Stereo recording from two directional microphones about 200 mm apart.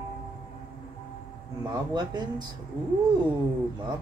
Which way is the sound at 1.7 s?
20° right (ahead or behind).